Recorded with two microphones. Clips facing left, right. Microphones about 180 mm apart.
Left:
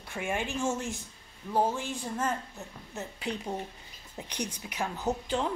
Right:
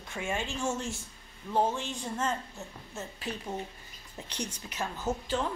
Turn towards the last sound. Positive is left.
turn(degrees=15)  # may be behind; listen again after turning